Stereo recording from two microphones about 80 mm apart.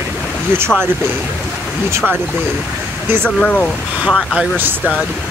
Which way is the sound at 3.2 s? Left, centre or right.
Centre.